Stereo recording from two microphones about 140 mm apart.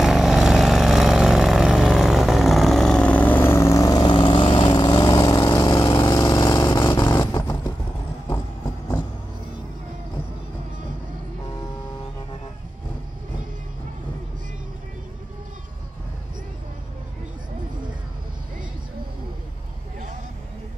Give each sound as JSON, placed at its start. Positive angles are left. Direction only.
{"t": 0.0, "sound": "vehicle", "side_deg": 0}